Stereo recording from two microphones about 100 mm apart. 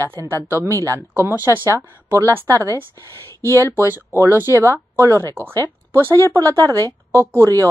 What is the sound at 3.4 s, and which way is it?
Speech, 25° left (ahead or behind).